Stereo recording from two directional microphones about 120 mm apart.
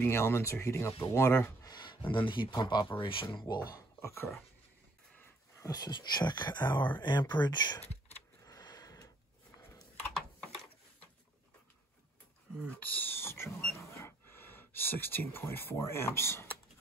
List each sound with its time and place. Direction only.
0.0 s speech: 20° left (ahead or behind)
1.7 s speech: 40° left (ahead or behind)
3.3 s speech: 35° left (ahead or behind)
5.6 s speech: 35° left (ahead or behind)
8.5 s a sound: 30° left (ahead or behind)
10.1 s a sound: centre (ahead or behind)
12.7 s speech: 15° left (ahead or behind)
13.7 s a sound: 20° left (ahead or behind)
14.8 s speech: 20° left (ahead or behind)